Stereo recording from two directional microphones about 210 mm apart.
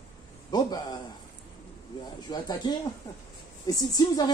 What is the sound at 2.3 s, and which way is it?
Speech, 20° left (ahead or behind).